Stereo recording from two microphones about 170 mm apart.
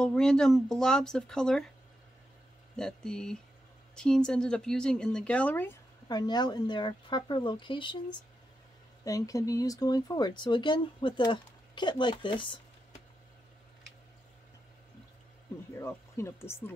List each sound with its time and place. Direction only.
0.0 s a woman's voice: 5° left (ahead or behind)
2.7 s a woman's voice: 5° left (ahead or behind)
6.0 s speech: 25° left (ahead or behind)
15.7 s speech: 15° left (ahead or behind)